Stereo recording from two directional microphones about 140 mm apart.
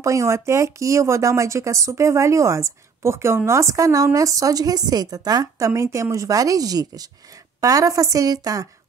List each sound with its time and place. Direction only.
0.0 s speech: 20° right (ahead or behind)